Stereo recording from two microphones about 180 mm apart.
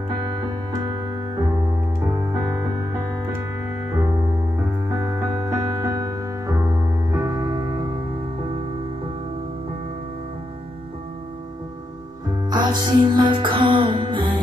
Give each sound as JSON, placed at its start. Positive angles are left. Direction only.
{"t": 0.2, "sound": "music", "side_deg": -25}
{"t": 4.8, "sound": "music", "side_deg": -15}
{"t": 12.4, "sound": "music", "side_deg": -25}